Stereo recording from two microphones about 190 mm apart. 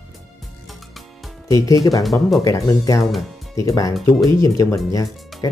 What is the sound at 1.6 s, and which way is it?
Speech, 15° left (ahead or behind).